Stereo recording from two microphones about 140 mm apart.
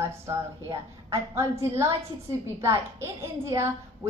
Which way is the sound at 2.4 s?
20° right (ahead or behind).